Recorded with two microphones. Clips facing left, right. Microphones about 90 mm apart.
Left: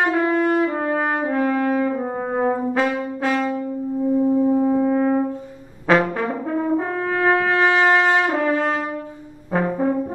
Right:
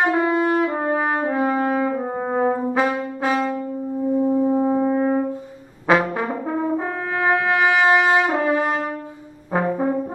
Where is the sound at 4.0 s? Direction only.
10° right (ahead or behind).